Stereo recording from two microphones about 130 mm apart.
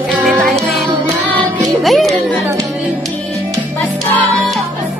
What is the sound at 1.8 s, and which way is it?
Music, centre (ahead or behind).